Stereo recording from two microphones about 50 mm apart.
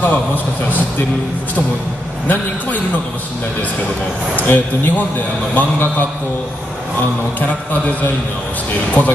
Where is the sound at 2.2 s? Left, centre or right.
Left.